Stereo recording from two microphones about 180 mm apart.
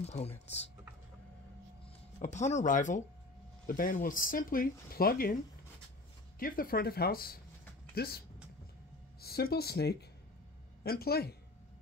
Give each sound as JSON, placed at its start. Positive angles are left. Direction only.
{"t": 0.0, "sound": "a sound", "side_deg": 35}
{"t": 2.1, "sound": "speech", "side_deg": 40}
{"t": 6.4, "sound": "speech", "side_deg": 50}
{"t": 9.2, "sound": "speech", "side_deg": 60}